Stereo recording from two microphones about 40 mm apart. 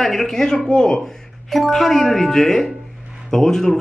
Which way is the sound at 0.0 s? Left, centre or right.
Centre.